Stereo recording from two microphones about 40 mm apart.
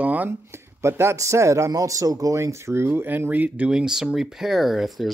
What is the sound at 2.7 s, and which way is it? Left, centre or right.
Speech, right.